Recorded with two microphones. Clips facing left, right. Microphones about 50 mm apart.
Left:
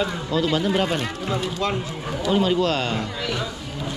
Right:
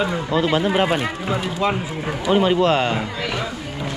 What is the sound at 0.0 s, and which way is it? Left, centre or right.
Speech, right.